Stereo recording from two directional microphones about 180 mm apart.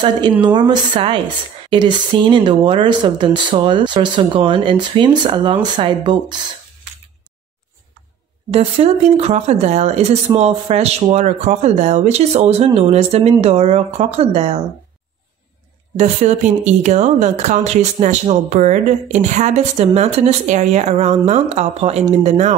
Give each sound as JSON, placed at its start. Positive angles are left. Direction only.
{"t": 0.4, "sound": "speech", "side_deg": -25}
{"t": 8.5, "sound": "speech", "side_deg": -35}
{"t": 16.0, "sound": "speech", "side_deg": -40}